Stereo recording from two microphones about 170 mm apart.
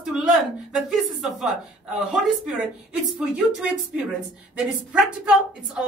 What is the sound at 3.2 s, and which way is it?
A man's voice, 5° right (ahead or behind).